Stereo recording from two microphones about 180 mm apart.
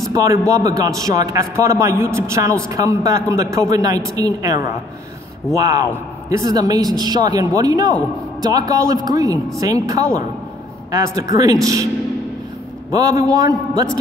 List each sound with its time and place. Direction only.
0.1 s a man's voice: 20° right (ahead or behind)
12.9 s a man's voice: 20° right (ahead or behind)